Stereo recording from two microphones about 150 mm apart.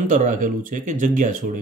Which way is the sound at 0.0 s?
60° right (ahead or behind).